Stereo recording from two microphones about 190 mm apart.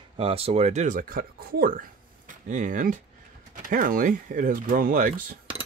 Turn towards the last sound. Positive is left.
turn(degrees=-45)  # may be behind; listen again after turning